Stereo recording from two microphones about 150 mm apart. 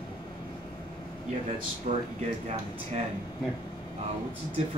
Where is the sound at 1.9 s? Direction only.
55° right (ahead or behind).